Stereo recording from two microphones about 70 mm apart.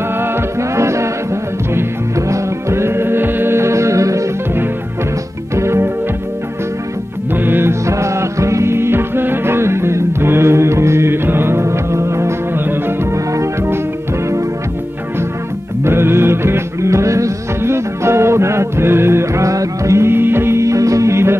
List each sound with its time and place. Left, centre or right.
0.2 s music: right
5.6 s music: right
7.3 s music: right
7.8 s music: right
13.1 s organ: right
15.8 s music: right